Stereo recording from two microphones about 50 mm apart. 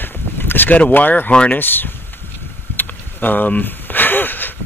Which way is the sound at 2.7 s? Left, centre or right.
Left.